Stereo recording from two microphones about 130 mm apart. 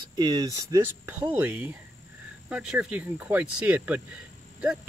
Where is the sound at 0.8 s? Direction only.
10° right (ahead or behind).